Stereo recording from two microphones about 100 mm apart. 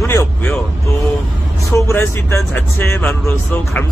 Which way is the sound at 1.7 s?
30° left (ahead or behind).